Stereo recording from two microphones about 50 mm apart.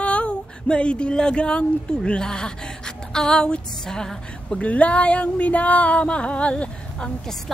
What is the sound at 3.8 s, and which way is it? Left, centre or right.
Speech, centre.